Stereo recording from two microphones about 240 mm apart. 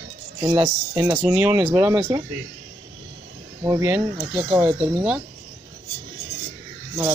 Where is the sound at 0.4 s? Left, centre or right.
Right.